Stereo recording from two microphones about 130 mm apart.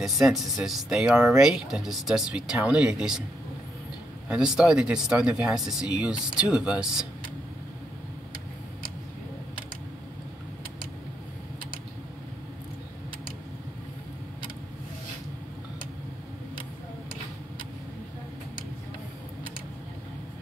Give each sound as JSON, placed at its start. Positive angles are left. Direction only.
{"t": 0.0, "sound": "speech", "side_deg": 0}
{"t": 4.3, "sound": "speech", "side_deg": -5}